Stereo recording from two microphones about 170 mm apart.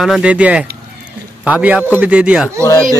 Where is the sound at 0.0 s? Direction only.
5° right (ahead or behind).